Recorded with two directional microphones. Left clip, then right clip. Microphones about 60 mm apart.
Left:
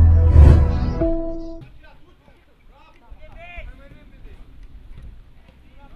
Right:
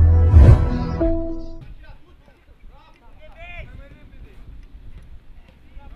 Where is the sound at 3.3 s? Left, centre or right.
Centre.